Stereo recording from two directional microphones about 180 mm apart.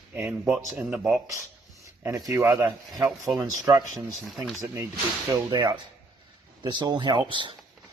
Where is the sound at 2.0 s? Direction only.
15° right (ahead or behind).